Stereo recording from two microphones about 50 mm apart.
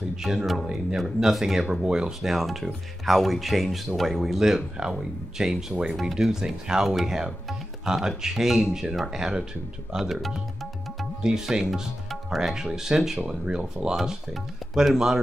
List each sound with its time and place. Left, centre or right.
0.2 s speech: centre
2.3 s speech: centre
13.9 s speech: centre